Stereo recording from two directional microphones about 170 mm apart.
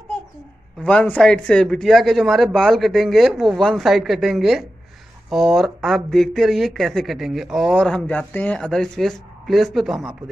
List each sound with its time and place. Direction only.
0.8 s speech: 10° left (ahead or behind)